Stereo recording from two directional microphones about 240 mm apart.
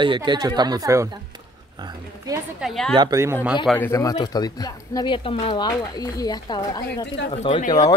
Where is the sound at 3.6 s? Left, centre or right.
Centre.